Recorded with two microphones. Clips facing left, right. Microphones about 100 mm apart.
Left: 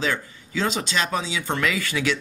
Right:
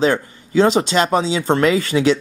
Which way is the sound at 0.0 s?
35° right (ahead or behind).